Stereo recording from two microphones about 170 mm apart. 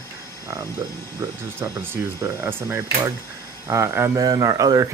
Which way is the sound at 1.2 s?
15° right (ahead or behind).